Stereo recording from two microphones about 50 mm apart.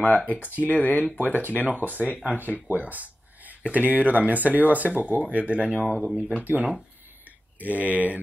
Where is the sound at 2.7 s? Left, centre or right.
Right.